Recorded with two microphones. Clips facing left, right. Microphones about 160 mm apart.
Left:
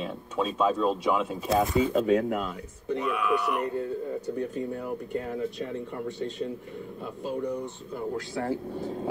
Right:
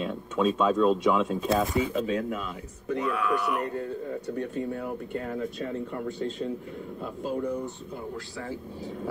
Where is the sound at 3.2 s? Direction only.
Centre (ahead or behind).